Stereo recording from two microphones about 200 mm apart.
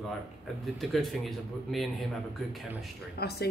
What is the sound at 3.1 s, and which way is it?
Speech, 50° left (ahead or behind).